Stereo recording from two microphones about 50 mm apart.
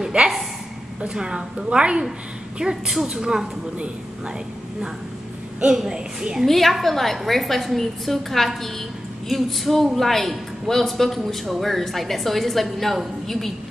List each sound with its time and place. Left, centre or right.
0.2 s a woman's voice: right
5.8 s a woman's voice: centre
6.4 s a man's voice: centre